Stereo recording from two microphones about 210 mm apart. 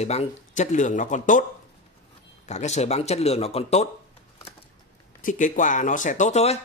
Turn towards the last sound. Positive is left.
turn(degrees=35)  # may be behind; listen again after turning